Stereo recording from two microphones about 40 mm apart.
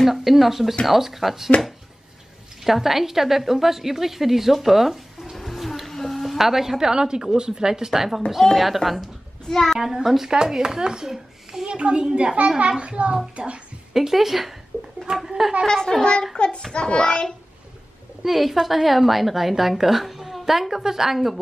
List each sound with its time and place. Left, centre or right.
0.0 s a woman's voice: centre
2.6 s a woman's voice: centre
9.5 s speech: centre
9.8 s a child's voice: centre
11.7 s a child's voice: right
13.9 s a woman's voice: centre
14.7 s speech: left
15.1 s a child's voice: centre
15.6 s speech: centre
16.3 s a child's voice: left
18.2 s a woman's voice: centre